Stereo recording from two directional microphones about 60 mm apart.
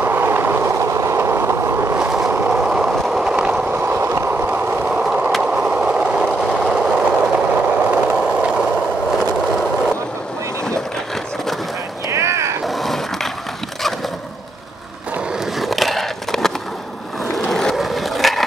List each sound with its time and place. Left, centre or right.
0.0 s train: right
0.8 s train: right
2.0 s vehicle: centre
2.5 s train: centre
3.7 s vehicle: right
4.3 s train: right
5.0 s train: centre
5.4 s vehicle: centre
12.1 s a sound: right
12.6 s a sound: centre
15.6 s skateboard: centre
17.4 s a sound: centre
17.7 s skateboard: centre